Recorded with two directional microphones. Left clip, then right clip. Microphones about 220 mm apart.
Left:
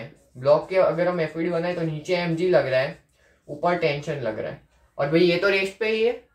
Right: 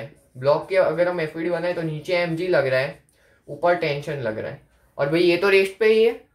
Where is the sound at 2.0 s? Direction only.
40° right (ahead or behind).